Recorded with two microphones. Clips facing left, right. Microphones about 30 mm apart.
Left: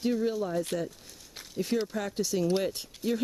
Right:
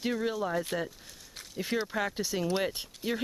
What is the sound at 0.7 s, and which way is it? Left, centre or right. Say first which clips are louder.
Speech: left 1 dB; centre.